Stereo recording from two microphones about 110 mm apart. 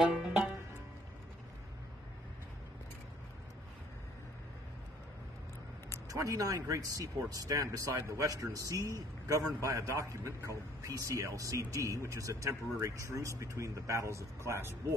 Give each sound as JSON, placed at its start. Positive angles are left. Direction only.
{"t": 0.1, "sound": "music", "side_deg": -5}
{"t": 6.0, "sound": "a man's voice", "side_deg": -30}